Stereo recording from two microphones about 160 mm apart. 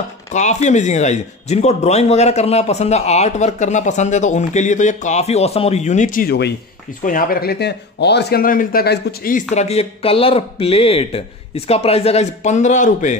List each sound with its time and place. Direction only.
0.3 s a man's voice: 45° left (ahead or behind); by 6.5 s 80° left
7.0 s speech: 60° left (ahead or behind); by 9.4 s 75° left (ahead or behind)
9.5 s speech: 40° left (ahead or behind)